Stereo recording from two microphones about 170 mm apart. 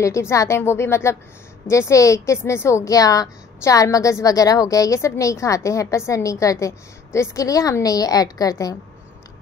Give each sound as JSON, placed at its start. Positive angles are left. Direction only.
{"t": 0.0, "sound": "a woman's voice", "side_deg": 15}